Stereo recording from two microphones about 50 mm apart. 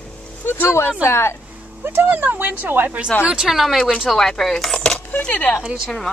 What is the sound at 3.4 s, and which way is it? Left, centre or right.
Speech, centre.